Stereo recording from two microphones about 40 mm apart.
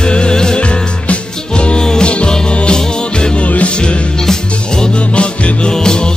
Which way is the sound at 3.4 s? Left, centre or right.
Left.